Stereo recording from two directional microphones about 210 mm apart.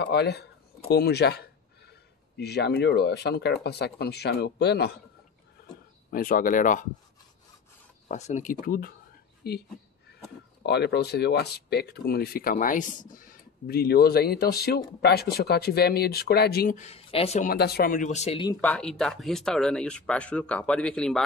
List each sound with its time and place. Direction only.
0.0 s speech: 50° left (ahead or behind)
6.0 s speech: 45° left (ahead or behind)
8.1 s speech: 35° left (ahead or behind); by 16.7 s 50° left (ahead or behind)
16.7 s speech: 30° left (ahead or behind)
17.5 s speech: 50° left (ahead or behind); by 18.6 s 25° left (ahead or behind)
18.6 s speech: 5° left (ahead or behind)